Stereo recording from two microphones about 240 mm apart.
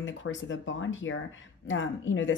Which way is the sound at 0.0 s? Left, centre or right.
Left.